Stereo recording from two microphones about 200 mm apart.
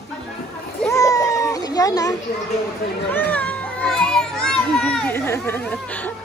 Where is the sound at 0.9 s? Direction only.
15° left (ahead or behind).